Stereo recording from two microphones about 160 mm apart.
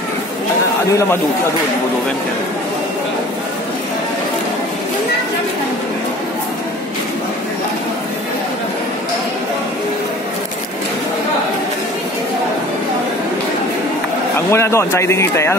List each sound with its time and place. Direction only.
14.5 s speech: 15° left (ahead or behind)